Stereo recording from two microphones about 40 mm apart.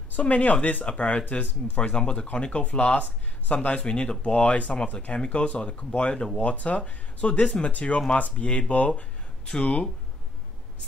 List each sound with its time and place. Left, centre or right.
0.1 s speech: left
4.2 s speech: left